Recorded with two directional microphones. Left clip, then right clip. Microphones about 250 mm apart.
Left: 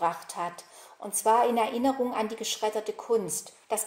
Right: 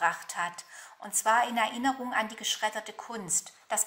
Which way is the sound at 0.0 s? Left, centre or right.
Right.